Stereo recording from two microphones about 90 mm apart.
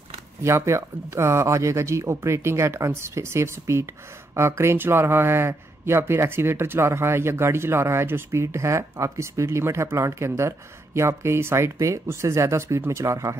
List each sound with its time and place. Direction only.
0.4 s a man's voice: 30° right (ahead or behind)